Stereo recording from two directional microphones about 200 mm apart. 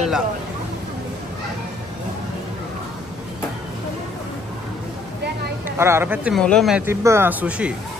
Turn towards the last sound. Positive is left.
turn(degrees=-5)  # may be behind; listen again after turning